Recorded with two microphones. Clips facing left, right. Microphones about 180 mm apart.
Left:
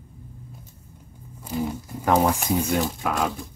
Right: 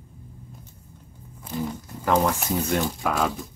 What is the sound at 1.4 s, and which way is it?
Speech, 10° left (ahead or behind).